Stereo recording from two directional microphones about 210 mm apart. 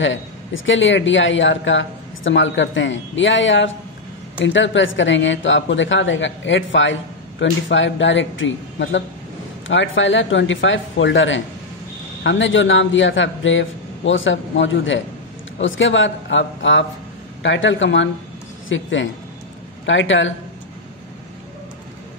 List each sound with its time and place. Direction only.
0.0 s a man's voice: 65° left (ahead or behind)